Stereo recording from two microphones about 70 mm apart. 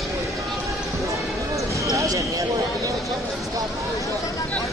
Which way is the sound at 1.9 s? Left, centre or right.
Right.